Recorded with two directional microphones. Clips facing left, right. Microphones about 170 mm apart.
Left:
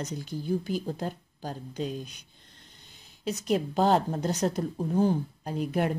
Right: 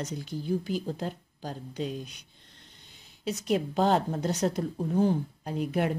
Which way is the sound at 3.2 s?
40° left (ahead or behind).